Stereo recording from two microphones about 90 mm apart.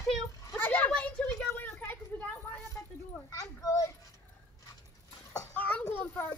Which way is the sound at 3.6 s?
40° left (ahead or behind).